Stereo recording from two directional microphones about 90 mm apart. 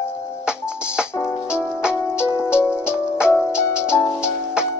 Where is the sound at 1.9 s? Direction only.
25° left (ahead or behind).